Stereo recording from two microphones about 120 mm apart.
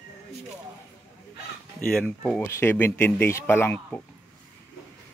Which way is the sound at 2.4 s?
20° left (ahead or behind).